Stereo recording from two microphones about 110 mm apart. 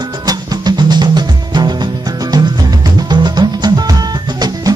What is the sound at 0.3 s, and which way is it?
Music, 40° right (ahead or behind).